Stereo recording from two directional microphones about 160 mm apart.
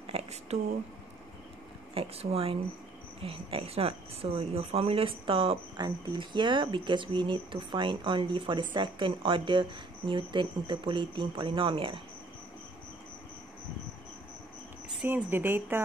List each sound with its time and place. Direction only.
0.0 s a sound: 40° right (ahead or behind)
2.0 s speech: 35° right (ahead or behind)
15.0 s speech: 15° right (ahead or behind)